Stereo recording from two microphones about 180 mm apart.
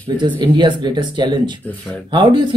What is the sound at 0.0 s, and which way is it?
Speech, 25° right (ahead or behind).